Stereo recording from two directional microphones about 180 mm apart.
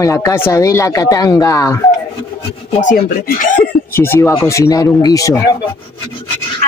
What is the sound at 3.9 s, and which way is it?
Speech, 15° left (ahead or behind).